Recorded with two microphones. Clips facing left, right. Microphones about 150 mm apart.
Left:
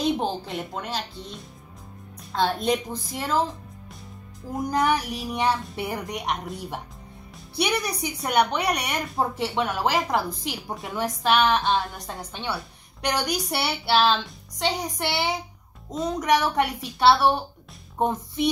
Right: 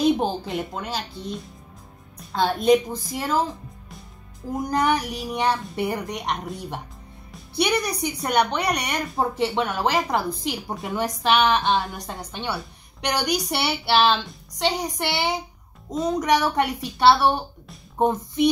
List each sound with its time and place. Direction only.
0.0 s speech: centre (ahead or behind)
4.6 s speech: centre (ahead or behind)